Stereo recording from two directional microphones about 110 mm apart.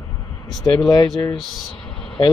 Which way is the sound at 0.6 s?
35° left (ahead or behind).